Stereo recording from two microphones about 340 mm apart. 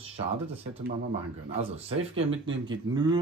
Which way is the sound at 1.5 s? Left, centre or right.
Centre.